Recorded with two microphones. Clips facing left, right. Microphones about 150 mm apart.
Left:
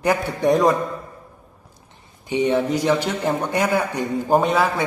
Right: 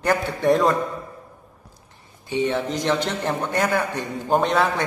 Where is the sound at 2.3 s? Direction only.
15° left (ahead or behind).